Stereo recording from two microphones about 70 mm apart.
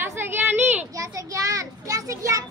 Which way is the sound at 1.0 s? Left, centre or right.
Right.